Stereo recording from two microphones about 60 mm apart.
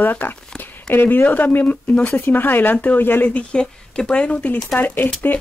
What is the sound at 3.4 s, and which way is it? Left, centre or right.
Speech, centre.